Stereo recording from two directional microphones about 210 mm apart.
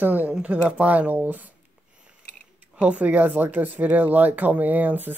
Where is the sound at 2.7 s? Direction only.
5° right (ahead or behind).